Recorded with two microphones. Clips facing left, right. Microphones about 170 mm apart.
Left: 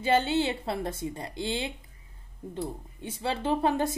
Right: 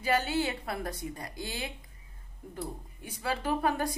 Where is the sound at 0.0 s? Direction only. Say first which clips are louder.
Left 4 dB; 25° left (ahead or behind).